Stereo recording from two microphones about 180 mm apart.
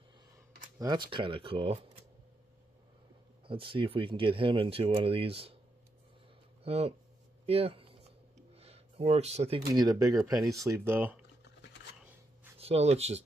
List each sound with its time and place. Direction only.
0.7 s speech: 25° right (ahead or behind)
3.4 s speech: 30° right (ahead or behind)
6.6 s speech: 35° right (ahead or behind)
7.4 s a sound: 35° right (ahead or behind)
9.8 s speech: 20° right (ahead or behind)
12.5 s speech: 35° right (ahead or behind)